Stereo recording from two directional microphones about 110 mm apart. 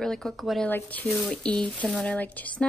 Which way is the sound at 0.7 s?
15° left (ahead or behind).